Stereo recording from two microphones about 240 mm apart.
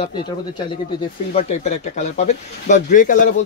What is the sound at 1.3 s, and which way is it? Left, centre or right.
Speech, left.